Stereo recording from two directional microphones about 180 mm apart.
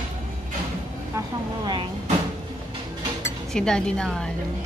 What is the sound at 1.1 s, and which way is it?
Vehicle, 25° right (ahead or behind).